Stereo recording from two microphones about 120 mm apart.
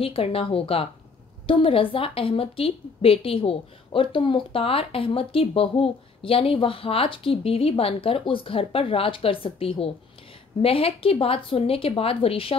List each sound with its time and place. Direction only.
0.0 s a woman's voice: 50° left (ahead or behind)